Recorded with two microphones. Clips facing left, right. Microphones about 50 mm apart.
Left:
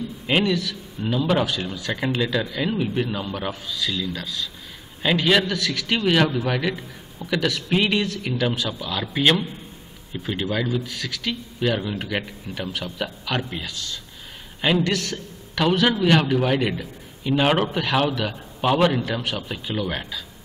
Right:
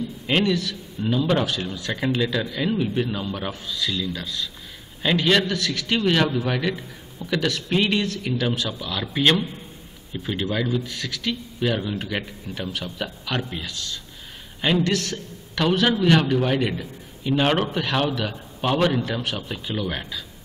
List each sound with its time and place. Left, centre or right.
0.3 s a man's voice: centre
14.8 s a man's voice: centre
15.5 s a man's voice: centre